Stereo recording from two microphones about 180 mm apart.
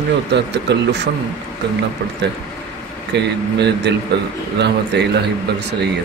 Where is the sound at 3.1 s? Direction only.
70° right (ahead or behind).